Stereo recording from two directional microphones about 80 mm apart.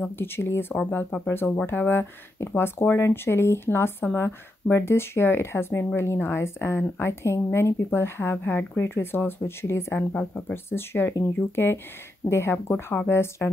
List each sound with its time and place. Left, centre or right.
0.2 s speech: left